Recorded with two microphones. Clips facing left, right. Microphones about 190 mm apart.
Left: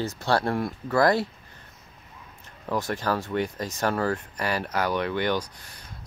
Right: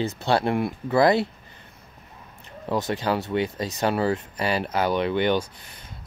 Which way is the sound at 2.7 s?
20° right (ahead or behind).